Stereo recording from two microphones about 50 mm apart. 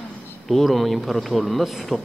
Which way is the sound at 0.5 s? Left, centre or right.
Centre.